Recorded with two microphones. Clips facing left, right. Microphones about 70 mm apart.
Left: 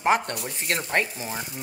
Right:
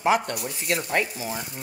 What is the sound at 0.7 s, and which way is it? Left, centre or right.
Frying, left.